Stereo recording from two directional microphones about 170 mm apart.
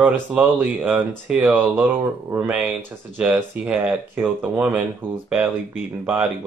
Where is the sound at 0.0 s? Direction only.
10° right (ahead or behind).